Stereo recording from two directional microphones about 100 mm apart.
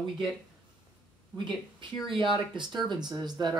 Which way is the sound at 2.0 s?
55° right (ahead or behind).